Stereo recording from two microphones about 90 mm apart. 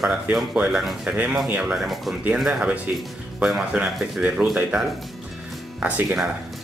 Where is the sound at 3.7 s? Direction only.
5° right (ahead or behind).